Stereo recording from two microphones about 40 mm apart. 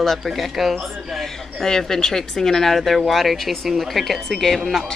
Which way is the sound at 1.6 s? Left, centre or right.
Centre.